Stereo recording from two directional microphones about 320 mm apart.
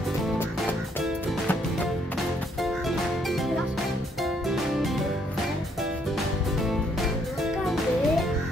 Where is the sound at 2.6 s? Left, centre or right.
Centre.